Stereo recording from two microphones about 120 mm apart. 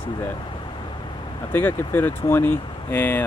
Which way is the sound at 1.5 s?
20° left (ahead or behind).